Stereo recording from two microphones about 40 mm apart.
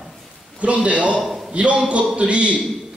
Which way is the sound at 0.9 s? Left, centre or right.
Right.